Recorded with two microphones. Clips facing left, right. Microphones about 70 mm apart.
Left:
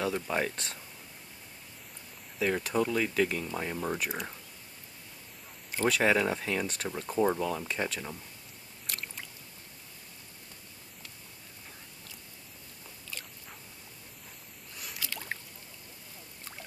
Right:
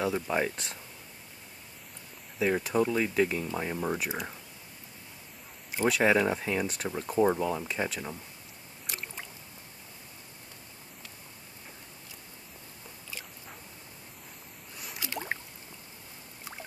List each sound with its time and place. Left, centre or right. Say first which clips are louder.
0.0 s speech: right 2 dB; centre
2.3 s speech: right 2 dB; centre
5.7 s speech: right 1 dB; centre
8.8 s boat: right 1 dB; centre
15.0 s rowboat: right 4 dB; right